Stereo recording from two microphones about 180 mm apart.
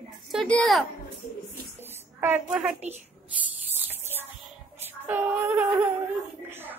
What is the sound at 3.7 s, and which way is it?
Music, 10° right (ahead or behind).